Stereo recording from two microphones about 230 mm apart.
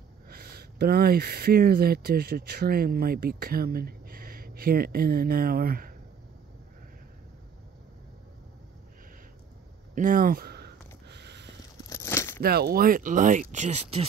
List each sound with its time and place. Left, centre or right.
0.3 s speech: right
9.9 s a sound: right
11.9 s crumpling: centre
12.4 s speech: right